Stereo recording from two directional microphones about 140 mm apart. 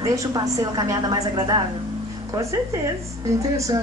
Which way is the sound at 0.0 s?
25° right (ahead or behind).